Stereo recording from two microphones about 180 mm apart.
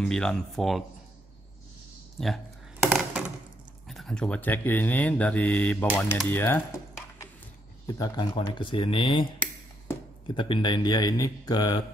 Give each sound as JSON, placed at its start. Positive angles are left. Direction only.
{"t": 0.0, "sound": "speech", "side_deg": 5}
{"t": 2.1, "sound": "speech", "side_deg": 0}
{"t": 2.8, "sound": "a sound", "side_deg": -10}
{"t": 3.8, "sound": "speech", "side_deg": 0}
{"t": 7.8, "sound": "speech", "side_deg": 25}